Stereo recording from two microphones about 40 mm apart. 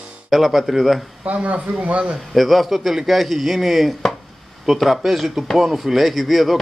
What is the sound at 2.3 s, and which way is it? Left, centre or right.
A man's voice, centre.